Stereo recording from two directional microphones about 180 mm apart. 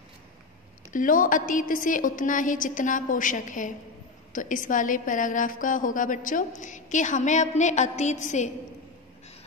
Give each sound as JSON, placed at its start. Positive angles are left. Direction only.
{"t": 0.9, "sound": "a woman's voice", "side_deg": 50}